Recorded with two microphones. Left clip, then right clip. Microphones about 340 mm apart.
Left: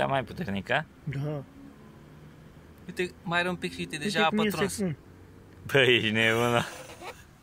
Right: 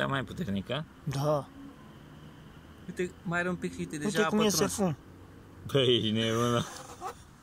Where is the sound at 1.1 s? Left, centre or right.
Right.